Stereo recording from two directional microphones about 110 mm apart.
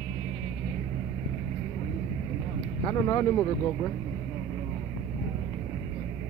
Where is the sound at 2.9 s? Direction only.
35° left (ahead or behind).